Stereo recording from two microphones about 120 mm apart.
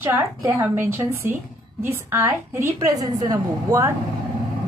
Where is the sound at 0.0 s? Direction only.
20° right (ahead or behind).